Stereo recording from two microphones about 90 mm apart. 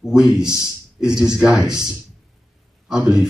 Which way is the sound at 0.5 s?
35° left (ahead or behind).